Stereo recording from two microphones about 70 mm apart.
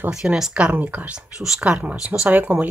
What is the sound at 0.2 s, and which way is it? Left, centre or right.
Speech, centre.